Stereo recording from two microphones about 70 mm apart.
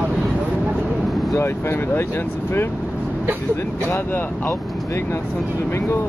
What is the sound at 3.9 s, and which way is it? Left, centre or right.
Speech, left.